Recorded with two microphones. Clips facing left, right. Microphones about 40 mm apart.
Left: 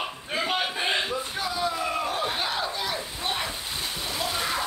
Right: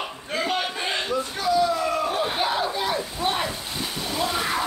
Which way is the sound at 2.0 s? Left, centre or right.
Centre.